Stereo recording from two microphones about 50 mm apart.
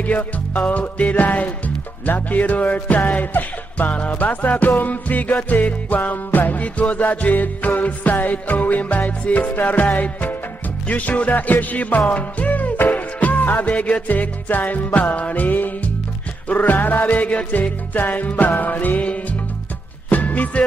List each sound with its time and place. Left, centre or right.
0.0 s music: left